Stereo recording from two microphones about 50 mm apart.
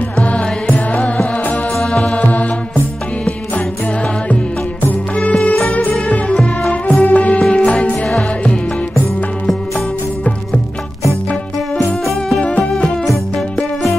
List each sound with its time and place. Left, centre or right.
0.2 s music: left
5.3 s music: left
12.4 s music: left
13.0 s music: centre